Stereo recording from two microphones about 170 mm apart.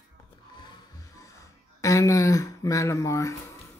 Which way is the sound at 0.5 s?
20° left (ahead or behind).